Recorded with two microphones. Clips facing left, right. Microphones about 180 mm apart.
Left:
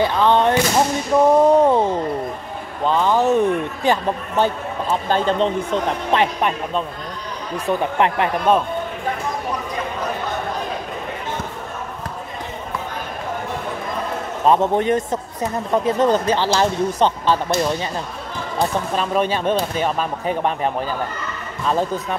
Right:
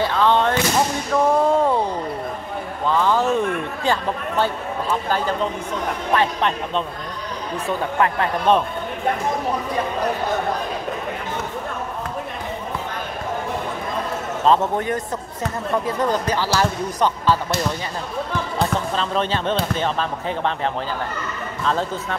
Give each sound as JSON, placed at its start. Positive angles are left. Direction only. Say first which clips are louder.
{"t": 0.0, "sound": "speech", "louder": "left 2 dB", "side_deg": 15}
{"t": 6.1, "sound": "speech", "louder": "left 1 dB", "side_deg": 15}
{"t": 14.4, "sound": "speech", "louder": "left 2 dB", "side_deg": 15}
{"t": 18.6, "sound": "speech", "louder": "left 3 dB", "side_deg": 10}